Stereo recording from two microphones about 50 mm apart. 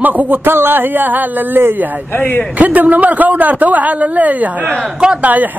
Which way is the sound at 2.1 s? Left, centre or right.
Left.